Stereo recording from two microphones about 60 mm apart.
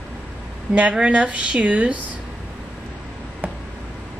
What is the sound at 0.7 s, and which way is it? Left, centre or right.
Speech, centre.